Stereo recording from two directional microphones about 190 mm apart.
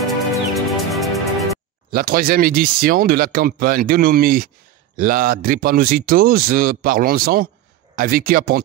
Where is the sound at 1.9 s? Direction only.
50° right (ahead or behind).